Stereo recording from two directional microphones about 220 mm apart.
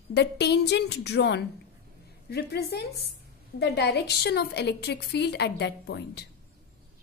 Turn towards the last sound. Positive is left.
turn(degrees=50)  # may be behind; listen again after turning